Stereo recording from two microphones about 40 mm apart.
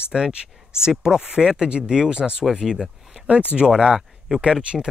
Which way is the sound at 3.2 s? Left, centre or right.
Right.